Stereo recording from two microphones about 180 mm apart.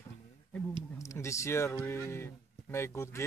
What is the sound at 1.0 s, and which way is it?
Speech, 15° left (ahead or behind).